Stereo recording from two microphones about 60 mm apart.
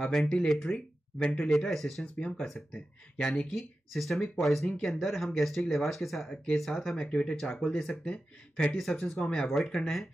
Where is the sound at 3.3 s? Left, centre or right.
Centre.